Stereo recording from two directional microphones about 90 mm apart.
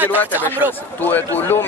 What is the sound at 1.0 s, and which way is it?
Speech, 20° left (ahead or behind).